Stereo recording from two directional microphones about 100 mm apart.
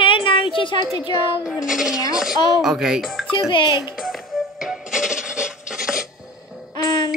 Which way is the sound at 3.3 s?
55° left (ahead or behind).